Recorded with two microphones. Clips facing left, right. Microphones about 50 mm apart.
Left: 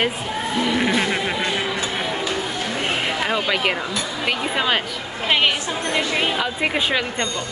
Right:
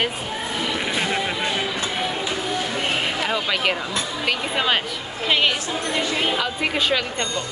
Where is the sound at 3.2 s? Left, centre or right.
Centre.